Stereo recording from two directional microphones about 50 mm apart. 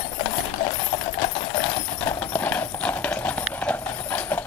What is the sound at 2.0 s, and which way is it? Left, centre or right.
Clip-clop, left.